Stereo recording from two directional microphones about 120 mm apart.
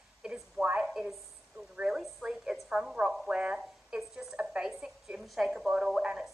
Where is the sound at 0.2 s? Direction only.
10° right (ahead or behind).